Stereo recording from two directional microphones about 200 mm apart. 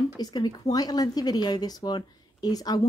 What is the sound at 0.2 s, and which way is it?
A woman's voice, 20° left (ahead or behind).